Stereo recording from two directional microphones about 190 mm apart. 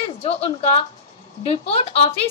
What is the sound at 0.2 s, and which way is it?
A woman's voice, 30° left (ahead or behind).